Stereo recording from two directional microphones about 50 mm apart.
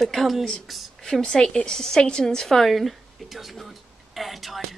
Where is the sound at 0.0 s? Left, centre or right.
Centre.